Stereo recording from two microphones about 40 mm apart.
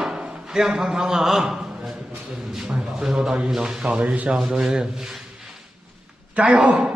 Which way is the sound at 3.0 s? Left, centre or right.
Centre.